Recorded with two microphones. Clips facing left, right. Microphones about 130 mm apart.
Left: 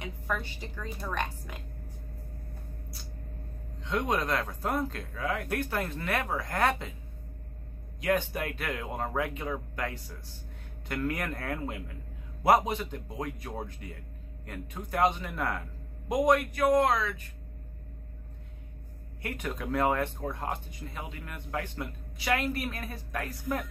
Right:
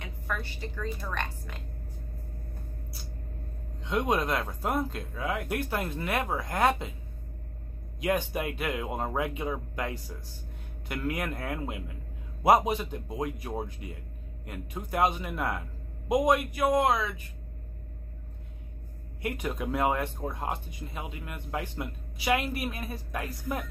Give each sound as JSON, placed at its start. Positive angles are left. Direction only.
{"t": 0.0, "sound": "a woman's voice", "side_deg": 15}
{"t": 3.8, "sound": "speech", "side_deg": -15}
{"t": 8.0, "sound": "speech", "side_deg": -15}
{"t": 11.0, "sound": "speech", "side_deg": -10}
{"t": 19.2, "sound": "speech", "side_deg": -15}